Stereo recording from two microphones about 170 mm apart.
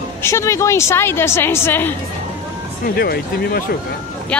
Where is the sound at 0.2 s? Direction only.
15° left (ahead or behind).